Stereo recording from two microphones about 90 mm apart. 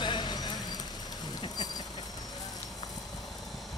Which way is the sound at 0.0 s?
55° left (ahead or behind).